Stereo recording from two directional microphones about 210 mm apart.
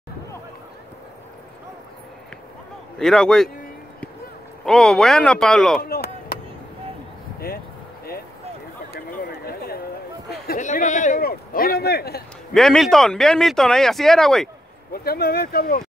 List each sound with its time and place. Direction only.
3.0 s speech: centre (ahead or behind)
4.6 s speech: 5° left (ahead or behind)
5.8 s chop: 45° left (ahead or behind)
7.3 s a sound: 45° left (ahead or behind)
10.4 s a man's voice: 40° left (ahead or behind)
12.5 s speech: centre (ahead or behind)
14.9 s a man's voice: 45° left (ahead or behind)